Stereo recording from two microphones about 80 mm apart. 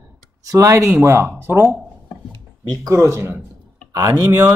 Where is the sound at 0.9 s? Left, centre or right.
Right.